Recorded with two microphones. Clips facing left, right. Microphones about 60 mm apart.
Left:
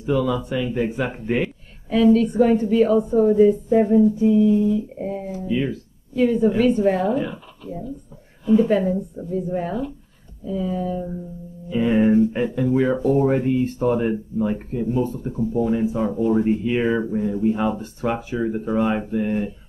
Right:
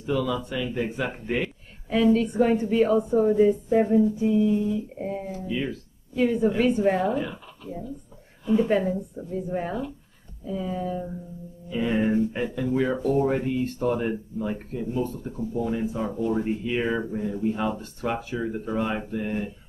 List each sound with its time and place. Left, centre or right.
0.0 s speech: centre
1.9 s a woman's voice: centre
3.8 s a woman's voice: centre
5.5 s speech: centre
6.1 s a woman's voice: centre
7.1 s speech: centre
8.5 s a woman's voice: centre
11.7 s speech: centre